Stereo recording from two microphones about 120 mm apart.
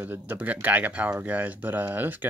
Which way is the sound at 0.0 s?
15° right (ahead or behind).